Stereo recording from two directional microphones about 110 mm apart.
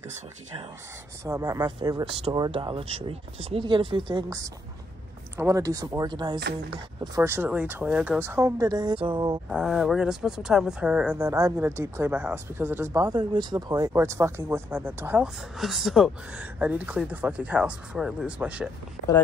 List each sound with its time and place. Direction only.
1.2 s speech: 30° right (ahead or behind)
2.5 s speech: 55° right (ahead or behind)
3.6 s speech: 45° right (ahead or behind)
5.4 s speech: 30° right (ahead or behind)
7.2 s speech: 20° right (ahead or behind); by 8.9 s 35° right (ahead or behind)
8.9 s speech: 55° right (ahead or behind)
9.5 s speech: 5° right (ahead or behind)
11.1 s speech: 25° right (ahead or behind)
13.1 s speech: 45° right (ahead or behind)
13.9 s speech: 25° right (ahead or behind)
15.2 s speech: centre (ahead or behind)
16.5 s speech: 15° right (ahead or behind)